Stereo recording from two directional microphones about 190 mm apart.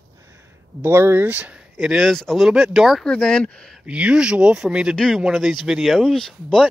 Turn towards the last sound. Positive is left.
turn(degrees=0)  # may be behind; listen again after turning